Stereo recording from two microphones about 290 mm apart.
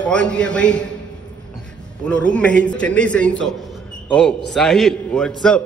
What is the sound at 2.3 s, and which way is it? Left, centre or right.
A man's voice, centre.